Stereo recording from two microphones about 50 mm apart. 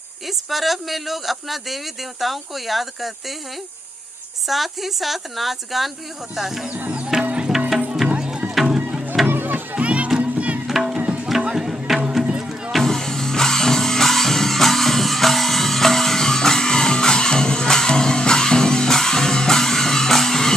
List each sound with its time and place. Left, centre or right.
0.5 s a man's voice: centre
4.5 s a man's voice: centre
6.7 s music: right
9.3 s music: right
9.8 s music: right
10.7 s music: centre
11.0 s tabla: right
11.2 s music: centre
12.7 s music: centre